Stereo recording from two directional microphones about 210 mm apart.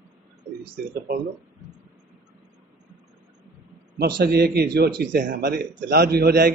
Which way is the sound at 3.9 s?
50° right (ahead or behind).